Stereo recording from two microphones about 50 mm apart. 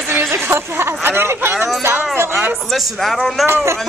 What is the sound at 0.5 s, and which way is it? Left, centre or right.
Speech, right.